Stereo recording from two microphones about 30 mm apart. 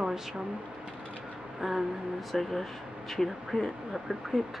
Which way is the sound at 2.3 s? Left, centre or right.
Centre.